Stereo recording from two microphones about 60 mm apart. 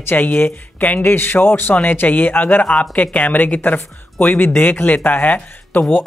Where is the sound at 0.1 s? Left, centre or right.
Left.